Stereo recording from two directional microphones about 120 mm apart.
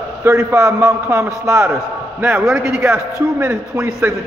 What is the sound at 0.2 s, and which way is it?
A man's voice, 20° right (ahead or behind).